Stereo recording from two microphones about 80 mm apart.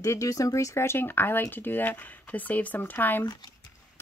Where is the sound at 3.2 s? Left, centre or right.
Left.